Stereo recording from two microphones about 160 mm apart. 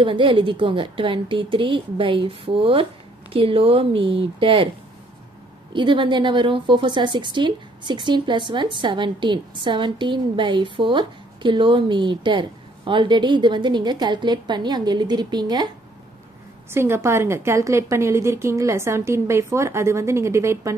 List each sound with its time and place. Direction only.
0.0 s a woman's voice: 30° right (ahead or behind)
5.7 s a woman's voice: 30° right (ahead or behind)
16.7 s a woman's voice: 15° right (ahead or behind)